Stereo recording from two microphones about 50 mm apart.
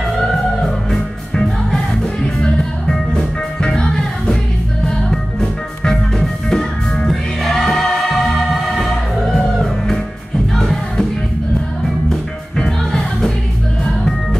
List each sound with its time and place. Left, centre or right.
0.7 s music: centre
9.3 s music: centre
12.5 s music: centre